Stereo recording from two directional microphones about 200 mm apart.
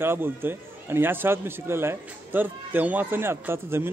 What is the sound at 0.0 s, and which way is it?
A man's voice, 10° right (ahead or behind).